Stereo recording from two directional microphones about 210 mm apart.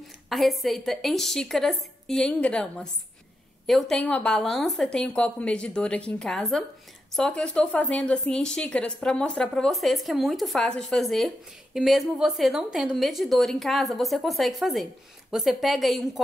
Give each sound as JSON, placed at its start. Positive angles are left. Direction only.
{"t": 0.3, "sound": "speech", "side_deg": 0}